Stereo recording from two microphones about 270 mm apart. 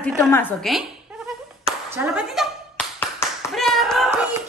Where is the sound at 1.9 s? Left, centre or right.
Centre.